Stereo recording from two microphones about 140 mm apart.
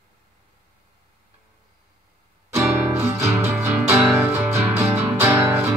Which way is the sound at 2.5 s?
15° right (ahead or behind).